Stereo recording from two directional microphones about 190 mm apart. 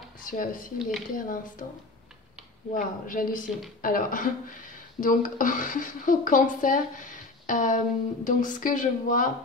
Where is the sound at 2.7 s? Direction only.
45° left (ahead or behind).